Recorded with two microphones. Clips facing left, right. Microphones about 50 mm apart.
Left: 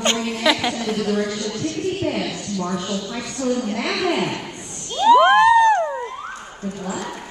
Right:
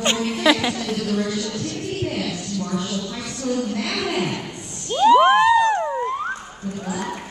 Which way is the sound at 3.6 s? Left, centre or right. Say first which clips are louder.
Left 1 dB; left.